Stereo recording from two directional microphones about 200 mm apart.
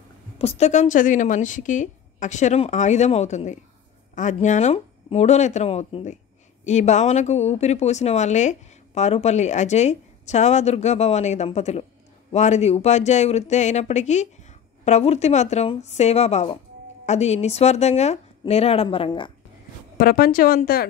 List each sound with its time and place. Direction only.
0.4 s speech: 30° left (ahead or behind)
20.0 s speech: 50° left (ahead or behind)